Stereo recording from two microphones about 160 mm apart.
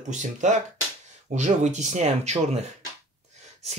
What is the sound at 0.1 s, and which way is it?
Speech, 50° right (ahead or behind).